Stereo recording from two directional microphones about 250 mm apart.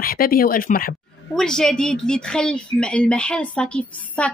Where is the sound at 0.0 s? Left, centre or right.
Left.